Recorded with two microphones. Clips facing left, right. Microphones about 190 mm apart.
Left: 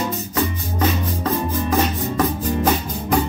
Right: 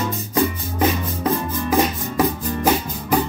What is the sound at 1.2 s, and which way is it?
Music, 10° right (ahead or behind).